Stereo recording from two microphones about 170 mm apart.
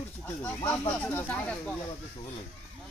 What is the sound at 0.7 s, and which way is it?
Speech, 10° left (ahead or behind).